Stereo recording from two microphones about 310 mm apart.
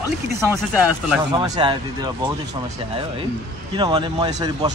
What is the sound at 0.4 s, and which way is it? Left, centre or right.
Speech, centre.